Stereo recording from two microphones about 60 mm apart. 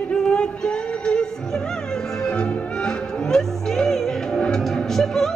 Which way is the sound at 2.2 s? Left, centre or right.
Centre.